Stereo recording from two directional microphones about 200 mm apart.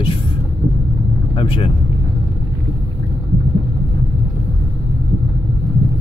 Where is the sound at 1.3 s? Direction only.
25° left (ahead or behind).